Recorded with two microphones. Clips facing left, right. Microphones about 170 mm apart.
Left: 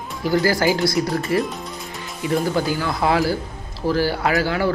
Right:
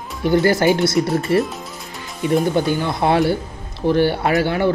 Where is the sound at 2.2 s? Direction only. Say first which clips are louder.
Right 3 dB; 25° right (ahead or behind).